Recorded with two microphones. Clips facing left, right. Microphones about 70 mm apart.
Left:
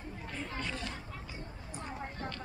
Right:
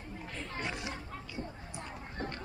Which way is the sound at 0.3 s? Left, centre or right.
Centre.